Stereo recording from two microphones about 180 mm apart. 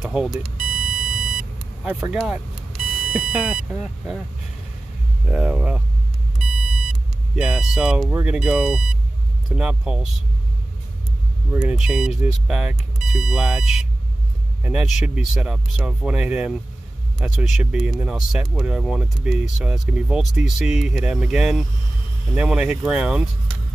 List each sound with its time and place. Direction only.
0.0 s vehicle: 5° right (ahead or behind)
1.9 s speech: 5° right (ahead or behind)
5.3 s speech: 5° right (ahead or behind)
11.5 s speech: 5° right (ahead or behind)